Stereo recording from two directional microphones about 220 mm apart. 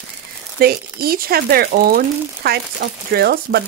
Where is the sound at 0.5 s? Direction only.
45° right (ahead or behind).